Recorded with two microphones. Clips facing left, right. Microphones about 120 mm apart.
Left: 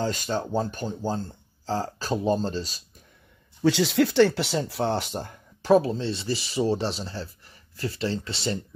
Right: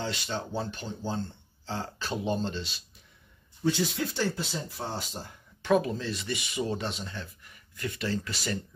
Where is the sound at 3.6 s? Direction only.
90° left; by 5.3 s 65° left (ahead or behind).